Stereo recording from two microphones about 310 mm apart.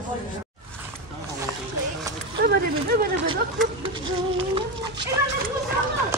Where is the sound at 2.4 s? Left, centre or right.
Right.